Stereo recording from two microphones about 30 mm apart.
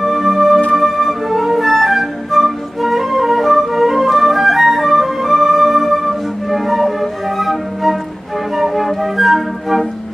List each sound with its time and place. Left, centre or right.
0.0 s music: centre
8.5 s flute: centre